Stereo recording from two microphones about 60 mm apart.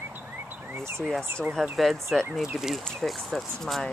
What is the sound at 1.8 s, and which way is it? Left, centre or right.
Speech, centre.